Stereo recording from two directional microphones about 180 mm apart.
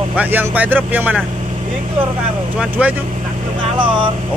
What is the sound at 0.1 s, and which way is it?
Speech, 10° right (ahead or behind).